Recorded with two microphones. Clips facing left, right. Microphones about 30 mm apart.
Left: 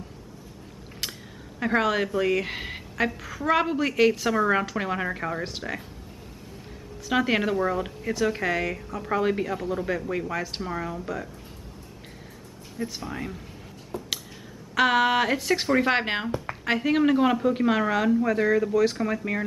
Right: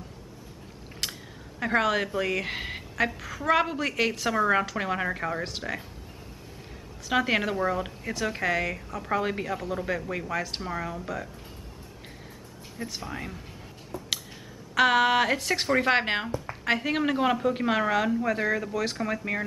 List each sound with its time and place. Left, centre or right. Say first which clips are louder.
1.0 s a sound: even; centre
1.6 s a woman's voice: left 1 dB; centre
7.1 s a woman's voice: left 2 dB; centre
12.7 s a woman's voice: left 3 dB; centre
13.9 s a sound: left 3 dB; left
14.8 s a woman's voice: even; centre